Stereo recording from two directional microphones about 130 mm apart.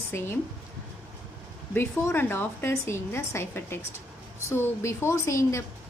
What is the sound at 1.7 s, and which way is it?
A woman's voice, 15° left (ahead or behind).